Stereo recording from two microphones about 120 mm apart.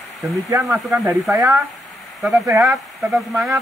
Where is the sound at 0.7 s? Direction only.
Centre (ahead or behind).